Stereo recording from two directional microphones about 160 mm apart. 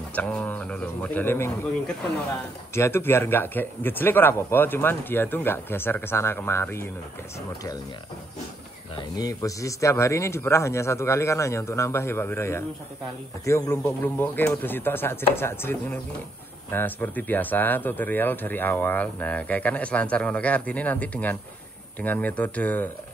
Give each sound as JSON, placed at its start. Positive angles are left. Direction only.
{"t": 0.1, "sound": "speech", "side_deg": 10}
{"t": 2.7, "sound": "speech", "side_deg": 15}
{"t": 8.9, "sound": "speech", "side_deg": 20}